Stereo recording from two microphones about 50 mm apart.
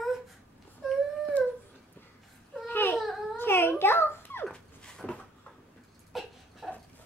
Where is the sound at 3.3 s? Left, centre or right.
Left.